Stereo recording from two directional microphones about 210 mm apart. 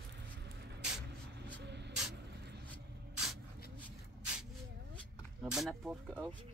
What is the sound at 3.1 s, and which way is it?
Spray, centre (ahead or behind).